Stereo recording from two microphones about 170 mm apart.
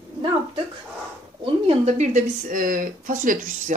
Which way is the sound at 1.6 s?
40° right (ahead or behind).